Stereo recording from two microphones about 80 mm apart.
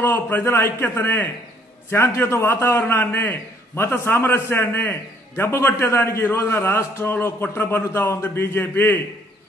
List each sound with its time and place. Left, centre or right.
0.0 s a man's voice: left